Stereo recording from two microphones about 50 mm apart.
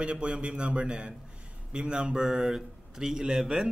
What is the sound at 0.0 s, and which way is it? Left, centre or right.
A man's voice, right.